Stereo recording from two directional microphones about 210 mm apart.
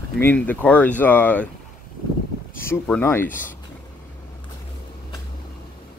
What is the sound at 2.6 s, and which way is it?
Speech, 10° left (ahead or behind).